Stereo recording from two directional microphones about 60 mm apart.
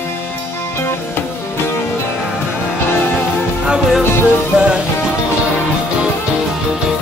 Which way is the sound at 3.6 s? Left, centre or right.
Centre.